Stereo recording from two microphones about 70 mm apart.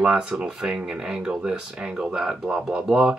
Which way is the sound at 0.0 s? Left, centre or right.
Centre.